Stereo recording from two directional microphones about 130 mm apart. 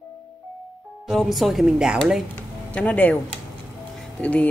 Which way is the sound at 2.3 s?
10° left (ahead or behind).